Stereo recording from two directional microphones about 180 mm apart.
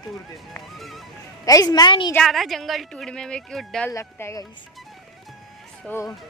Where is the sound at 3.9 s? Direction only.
15° left (ahead or behind).